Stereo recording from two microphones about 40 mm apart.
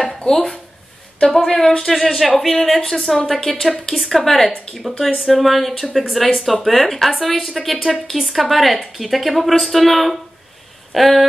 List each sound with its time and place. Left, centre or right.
0.2 s a woman's voice: centre